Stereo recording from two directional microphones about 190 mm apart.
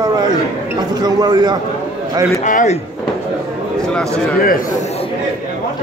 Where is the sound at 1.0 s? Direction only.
20° right (ahead or behind).